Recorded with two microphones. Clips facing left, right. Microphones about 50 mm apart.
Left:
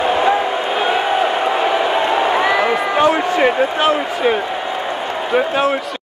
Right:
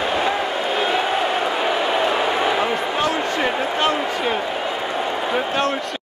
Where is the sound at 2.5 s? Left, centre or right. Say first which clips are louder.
Left 5 dB; left.